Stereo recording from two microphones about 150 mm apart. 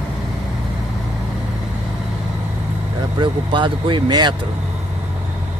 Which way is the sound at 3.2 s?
30° right (ahead or behind).